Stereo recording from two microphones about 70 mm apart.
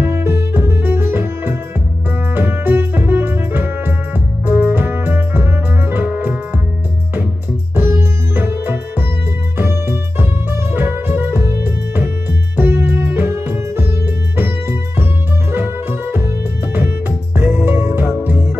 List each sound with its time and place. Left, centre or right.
0.0 s music: right
7.7 s music: right
14.3 s music: right
17.4 s music: right